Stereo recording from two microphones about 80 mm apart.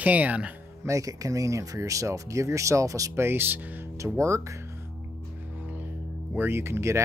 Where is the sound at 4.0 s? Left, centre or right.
Right.